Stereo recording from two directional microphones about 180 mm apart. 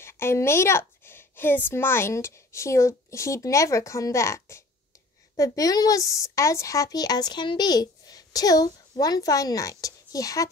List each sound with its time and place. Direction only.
0.0 s a woman's voice: 15° left (ahead or behind)